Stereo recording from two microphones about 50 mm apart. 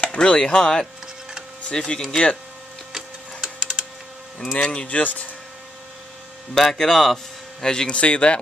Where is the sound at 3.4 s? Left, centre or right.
Centre.